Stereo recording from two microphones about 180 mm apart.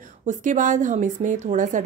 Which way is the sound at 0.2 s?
45° right (ahead or behind).